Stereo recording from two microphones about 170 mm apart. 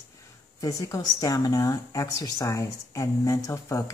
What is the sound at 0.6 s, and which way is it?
Speech, 20° left (ahead or behind).